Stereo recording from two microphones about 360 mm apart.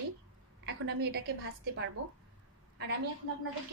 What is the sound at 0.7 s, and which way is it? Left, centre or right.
A woman's voice, right.